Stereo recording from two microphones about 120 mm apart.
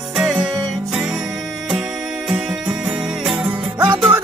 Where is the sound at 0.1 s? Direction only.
5° right (ahead or behind).